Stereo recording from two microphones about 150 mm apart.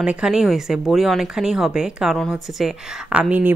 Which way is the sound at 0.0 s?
5° right (ahead or behind).